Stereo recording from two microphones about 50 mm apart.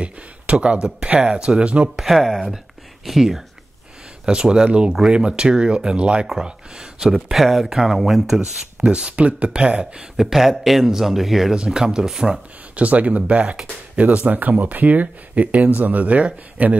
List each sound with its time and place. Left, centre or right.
0.0 s speech: right
2.0 s speech: centre
8.4 s speech: right; by 11.5 s centre
11.5 s speech: centre
12.7 s speech: right